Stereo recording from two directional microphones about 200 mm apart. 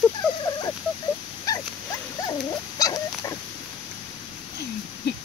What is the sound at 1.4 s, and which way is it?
Dog, 20° left (ahead or behind).